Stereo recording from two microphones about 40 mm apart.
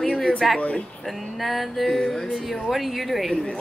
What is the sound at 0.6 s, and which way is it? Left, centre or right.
Speech, left.